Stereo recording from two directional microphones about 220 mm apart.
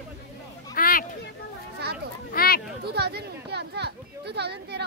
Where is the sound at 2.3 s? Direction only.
45° left (ahead or behind).